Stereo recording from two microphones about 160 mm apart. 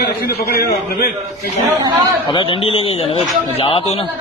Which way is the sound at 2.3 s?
30° left (ahead or behind).